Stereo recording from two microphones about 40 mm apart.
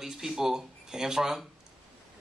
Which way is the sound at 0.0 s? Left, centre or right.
Centre.